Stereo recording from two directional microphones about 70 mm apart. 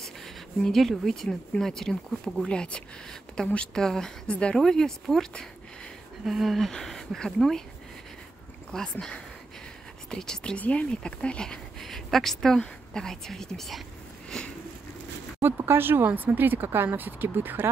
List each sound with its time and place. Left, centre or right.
0.0 s a sound: centre
1.5 s speech: centre
8.7 s speech: centre
10.1 s speech: centre
14.3 s sniff: centre
15.4 s speech: right